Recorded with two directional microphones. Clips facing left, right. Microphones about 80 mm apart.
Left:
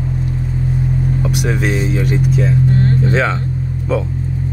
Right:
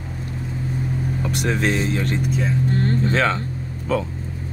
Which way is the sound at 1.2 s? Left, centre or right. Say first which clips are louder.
Even; centre.